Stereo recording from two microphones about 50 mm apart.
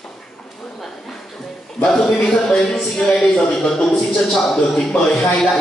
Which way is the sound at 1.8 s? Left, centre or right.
Centre.